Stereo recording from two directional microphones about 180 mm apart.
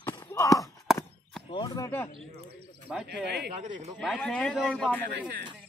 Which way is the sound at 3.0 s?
65° right (ahead or behind).